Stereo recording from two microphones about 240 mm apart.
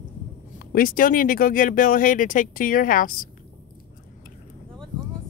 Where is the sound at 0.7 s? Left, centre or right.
Left.